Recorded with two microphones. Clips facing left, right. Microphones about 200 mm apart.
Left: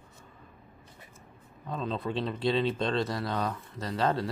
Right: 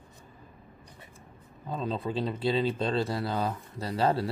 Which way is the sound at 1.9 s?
5° right (ahead or behind).